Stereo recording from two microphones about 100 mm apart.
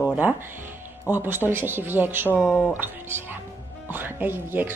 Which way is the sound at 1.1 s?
20° right (ahead or behind).